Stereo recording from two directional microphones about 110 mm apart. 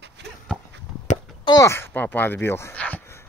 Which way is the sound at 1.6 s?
20° left (ahead or behind).